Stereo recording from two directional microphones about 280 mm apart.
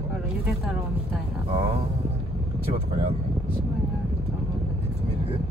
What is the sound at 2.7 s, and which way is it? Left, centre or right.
Speech, right.